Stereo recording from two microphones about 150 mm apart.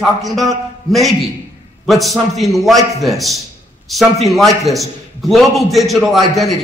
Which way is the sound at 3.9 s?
Centre (ahead or behind).